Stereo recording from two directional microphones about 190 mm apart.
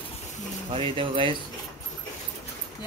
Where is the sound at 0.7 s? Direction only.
30° right (ahead or behind).